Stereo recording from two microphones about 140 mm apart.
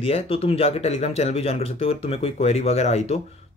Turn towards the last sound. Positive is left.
turn(degrees=50)  # may be behind; listen again after turning